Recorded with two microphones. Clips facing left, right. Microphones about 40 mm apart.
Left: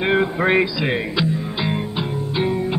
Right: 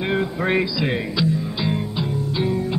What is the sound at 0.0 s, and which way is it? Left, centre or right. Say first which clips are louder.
Music: left 4 dB; left.